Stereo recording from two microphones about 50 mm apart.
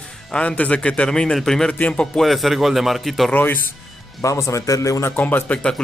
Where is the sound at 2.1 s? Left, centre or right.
Centre.